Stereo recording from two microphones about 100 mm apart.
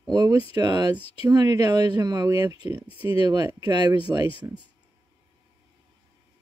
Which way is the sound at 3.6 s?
45° right (ahead or behind).